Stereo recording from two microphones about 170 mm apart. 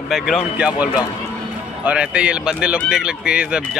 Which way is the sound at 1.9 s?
5° right (ahead or behind).